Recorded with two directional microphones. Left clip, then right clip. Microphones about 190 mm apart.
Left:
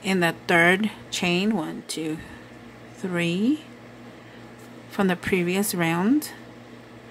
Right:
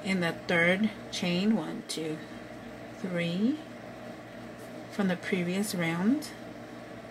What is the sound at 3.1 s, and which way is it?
Speech, 30° left (ahead or behind).